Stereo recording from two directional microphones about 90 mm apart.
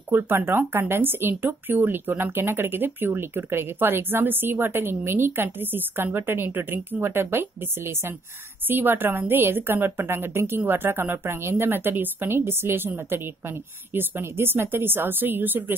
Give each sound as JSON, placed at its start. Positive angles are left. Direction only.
{"t": 0.1, "sound": "speech", "side_deg": -25}